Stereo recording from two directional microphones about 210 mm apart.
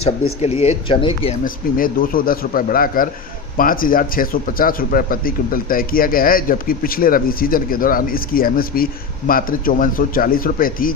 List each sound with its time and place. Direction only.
0.6 s speech: 25° left (ahead or behind)
1.4 s speech: 45° left (ahead or behind)